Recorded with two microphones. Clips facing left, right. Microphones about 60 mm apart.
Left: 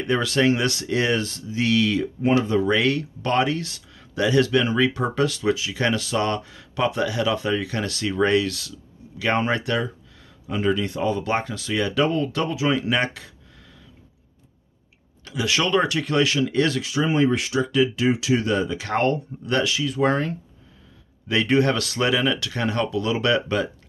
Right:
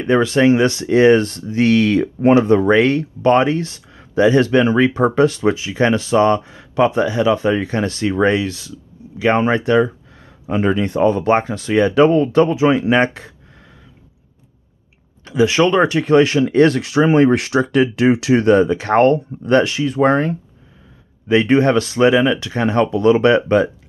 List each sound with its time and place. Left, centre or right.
0.0 s speech: right
15.2 s speech: right
16.8 s speech: right